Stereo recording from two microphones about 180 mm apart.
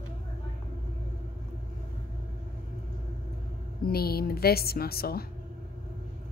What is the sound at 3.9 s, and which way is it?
A woman's voice, 60° left (ahead or behind).